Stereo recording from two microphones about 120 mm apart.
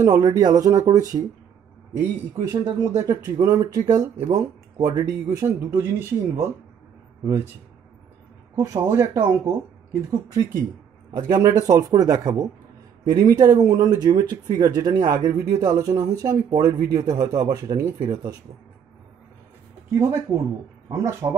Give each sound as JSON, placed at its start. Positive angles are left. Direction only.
{"t": 0.0, "sound": "speech", "side_deg": -30}
{"t": 8.7, "sound": "speech", "side_deg": -25}
{"t": 11.1, "sound": "speech", "side_deg": -35}
{"t": 19.9, "sound": "speech", "side_deg": -25}